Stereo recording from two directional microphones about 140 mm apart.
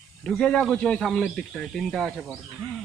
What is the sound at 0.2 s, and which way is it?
Speech, 5° left (ahead or behind).